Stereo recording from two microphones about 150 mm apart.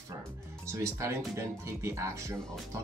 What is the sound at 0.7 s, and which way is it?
Speech, 20° right (ahead or behind).